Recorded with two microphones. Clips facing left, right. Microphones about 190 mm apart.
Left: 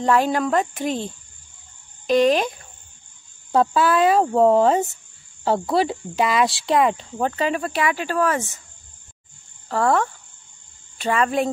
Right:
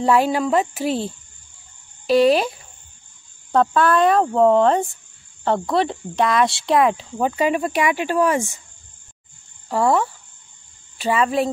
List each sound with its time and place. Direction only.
0.0 s speech: 10° right (ahead or behind)
2.0 s speech: 5° right (ahead or behind)
3.5 s speech: 5° left (ahead or behind); by 8.5 s 15° right (ahead or behind)
9.7 s speech: 10° right (ahead or behind)